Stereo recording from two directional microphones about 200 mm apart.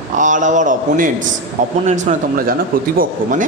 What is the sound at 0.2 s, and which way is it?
A man's voice, 40° right (ahead or behind).